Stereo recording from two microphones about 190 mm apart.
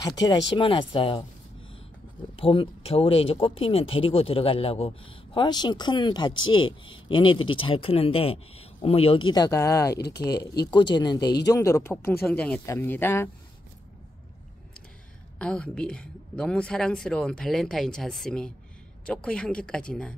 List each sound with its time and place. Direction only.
0.0 s speech: 20° left (ahead or behind)
2.3 s speech: 30° left (ahead or behind)
6.3 s speech: 90° left
6.6 s speech: 25° left (ahead or behind)
9.9 s speech: 60° left (ahead or behind)
10.7 s speech: 25° left (ahead or behind)
15.3 s speech: 5° left (ahead or behind)